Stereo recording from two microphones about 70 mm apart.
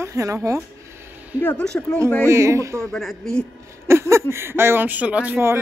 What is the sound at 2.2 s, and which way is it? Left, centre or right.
Speech, right.